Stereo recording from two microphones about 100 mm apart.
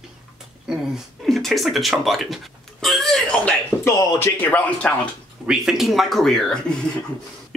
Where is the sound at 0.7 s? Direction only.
Centre (ahead or behind).